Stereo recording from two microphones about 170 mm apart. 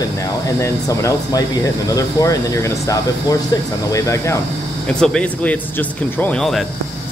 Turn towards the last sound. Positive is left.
turn(degrees=5)  # may be behind; listen again after turning